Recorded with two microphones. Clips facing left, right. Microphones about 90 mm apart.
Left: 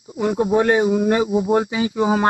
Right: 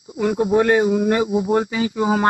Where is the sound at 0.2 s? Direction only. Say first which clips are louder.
Even; 30° left (ahead or behind).